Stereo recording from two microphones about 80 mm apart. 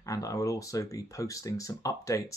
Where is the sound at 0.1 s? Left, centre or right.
Left.